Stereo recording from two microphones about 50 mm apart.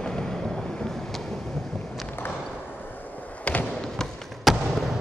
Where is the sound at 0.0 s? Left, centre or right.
Centre.